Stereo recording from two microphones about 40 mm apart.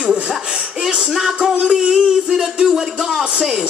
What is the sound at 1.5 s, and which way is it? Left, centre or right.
Speech, right.